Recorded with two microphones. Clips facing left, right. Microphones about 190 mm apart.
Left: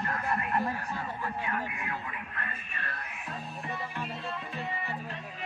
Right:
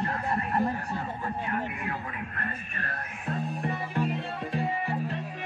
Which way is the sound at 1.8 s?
45° right (ahead or behind).